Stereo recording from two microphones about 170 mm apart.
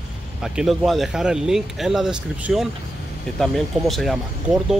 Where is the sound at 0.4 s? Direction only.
Centre (ahead or behind).